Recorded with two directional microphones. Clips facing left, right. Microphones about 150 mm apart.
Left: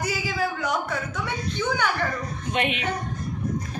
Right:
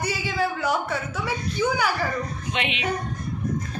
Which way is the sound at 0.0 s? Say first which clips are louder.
Right 1 dB; centre (ahead or behind).